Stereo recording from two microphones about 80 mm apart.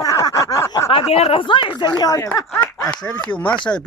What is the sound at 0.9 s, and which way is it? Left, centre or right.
Speech, left.